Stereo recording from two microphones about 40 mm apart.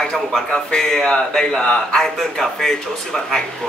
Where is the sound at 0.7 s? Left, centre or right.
Centre.